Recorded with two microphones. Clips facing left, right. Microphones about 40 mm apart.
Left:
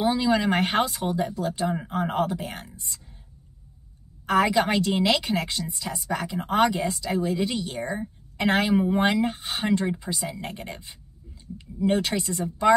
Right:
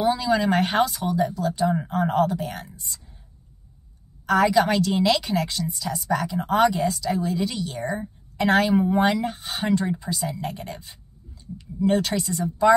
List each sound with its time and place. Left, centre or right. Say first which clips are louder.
0.0 s a woman's voice: right 1 dB; left
4.3 s a woman's voice: right 2 dB; left
11.8 s speech: right 2 dB; centre